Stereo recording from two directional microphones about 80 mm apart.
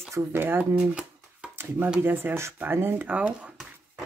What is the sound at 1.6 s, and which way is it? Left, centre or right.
Speech, right.